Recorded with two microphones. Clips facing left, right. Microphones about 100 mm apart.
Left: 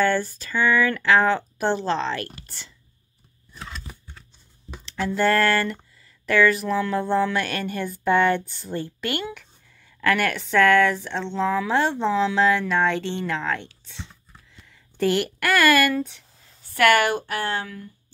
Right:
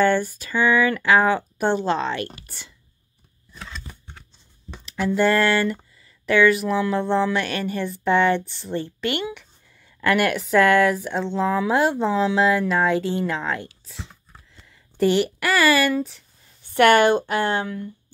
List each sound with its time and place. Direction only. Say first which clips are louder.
0.0 s speech: right 3 dB; 10° right (ahead or behind)
4.8 s speech: right 2 dB; 10° right (ahead or behind)
16.7 s speech: right 4 dB; 25° right (ahead or behind)